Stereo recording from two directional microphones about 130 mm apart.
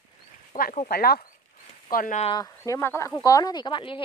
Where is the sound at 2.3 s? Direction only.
25° left (ahead or behind).